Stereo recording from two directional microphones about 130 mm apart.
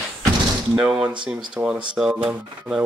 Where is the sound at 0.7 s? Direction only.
5° right (ahead or behind).